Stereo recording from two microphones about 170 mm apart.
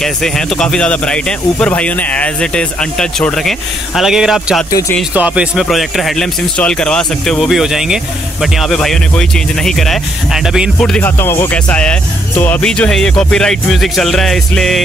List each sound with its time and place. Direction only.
0.0 s speech: 5° left (ahead or behind)
4.6 s speech: 20° left (ahead or behind)
5.1 s speech: 5° right (ahead or behind)